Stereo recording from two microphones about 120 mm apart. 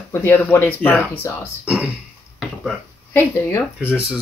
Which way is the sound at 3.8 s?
10° right (ahead or behind).